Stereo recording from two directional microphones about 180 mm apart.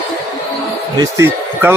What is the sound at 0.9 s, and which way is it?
Speech, 15° right (ahead or behind).